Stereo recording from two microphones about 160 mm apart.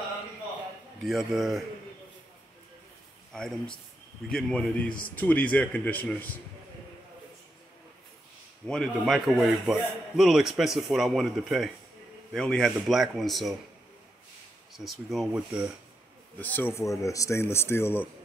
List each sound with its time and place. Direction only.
1.0 s a man's voice: centre (ahead or behind)
3.3 s a man's voice: 5° left (ahead or behind)
8.6 s a man's voice: 5° left (ahead or behind)
14.7 s a man's voice: centre (ahead or behind)
16.3 s speech: 10° left (ahead or behind)